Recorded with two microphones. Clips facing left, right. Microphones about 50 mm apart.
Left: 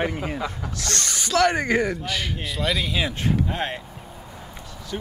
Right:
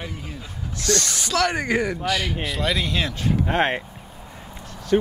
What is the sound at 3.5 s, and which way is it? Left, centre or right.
Speech, right.